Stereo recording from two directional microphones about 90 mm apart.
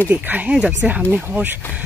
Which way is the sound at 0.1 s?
20° right (ahead or behind).